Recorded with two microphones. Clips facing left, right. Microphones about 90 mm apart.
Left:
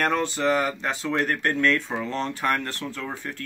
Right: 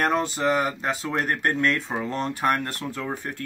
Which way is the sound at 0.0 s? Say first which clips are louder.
Even; 10° right (ahead or behind).